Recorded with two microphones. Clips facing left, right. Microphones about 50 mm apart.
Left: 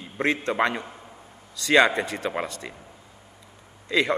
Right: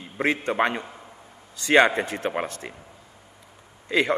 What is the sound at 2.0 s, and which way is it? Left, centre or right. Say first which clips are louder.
Speech: right 1 dB; right.